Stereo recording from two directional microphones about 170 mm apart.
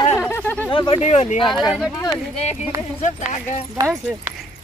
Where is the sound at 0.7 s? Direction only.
30° left (ahead or behind).